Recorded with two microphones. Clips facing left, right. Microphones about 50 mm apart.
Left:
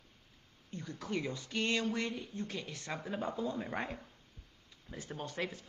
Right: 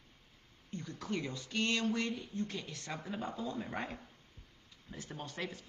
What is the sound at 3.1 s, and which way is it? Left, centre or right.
Speech, left.